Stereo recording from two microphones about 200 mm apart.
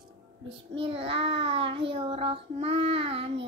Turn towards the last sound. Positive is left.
turn(degrees=-30)  # may be behind; listen again after turning